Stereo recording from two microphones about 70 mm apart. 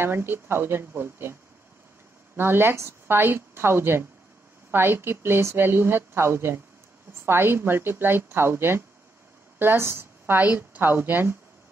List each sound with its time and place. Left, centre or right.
0.0 s a woman's voice: right
2.3 s a woman's voice: right